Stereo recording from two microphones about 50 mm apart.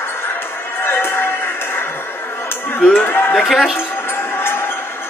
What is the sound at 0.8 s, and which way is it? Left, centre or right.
Music, left.